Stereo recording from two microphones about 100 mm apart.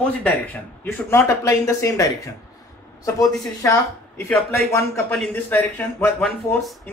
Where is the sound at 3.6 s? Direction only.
30° left (ahead or behind).